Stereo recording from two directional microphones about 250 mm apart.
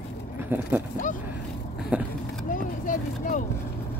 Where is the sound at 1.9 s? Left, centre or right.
Centre.